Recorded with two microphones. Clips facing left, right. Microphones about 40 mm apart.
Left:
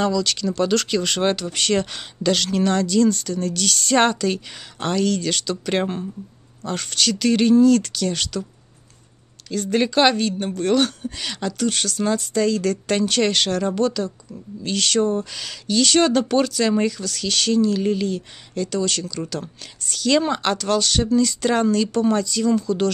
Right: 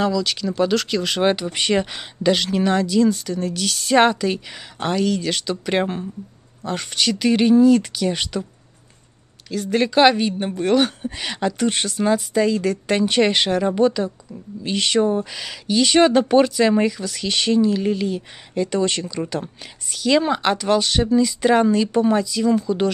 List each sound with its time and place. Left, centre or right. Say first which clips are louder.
0.0 s speech: even; centre
9.5 s speech: even; centre